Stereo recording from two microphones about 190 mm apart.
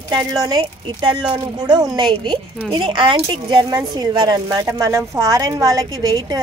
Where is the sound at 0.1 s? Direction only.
20° right (ahead or behind).